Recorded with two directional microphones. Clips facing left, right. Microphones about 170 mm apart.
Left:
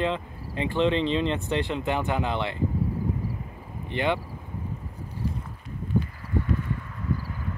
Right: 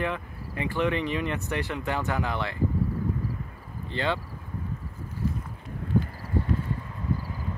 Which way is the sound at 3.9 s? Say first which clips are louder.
Left 3 dB; 20° left (ahead or behind).